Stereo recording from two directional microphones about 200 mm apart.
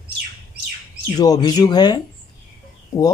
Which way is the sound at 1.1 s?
20° left (ahead or behind).